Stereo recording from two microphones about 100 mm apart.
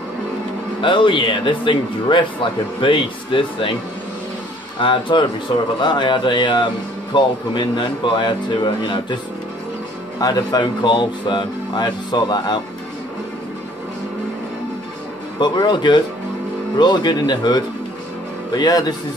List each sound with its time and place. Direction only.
0.7 s speech: 55° left (ahead or behind)
4.7 s speech: 55° left (ahead or behind)
10.1 s speech: 40° left (ahead or behind)
15.3 s speech: 50° left (ahead or behind)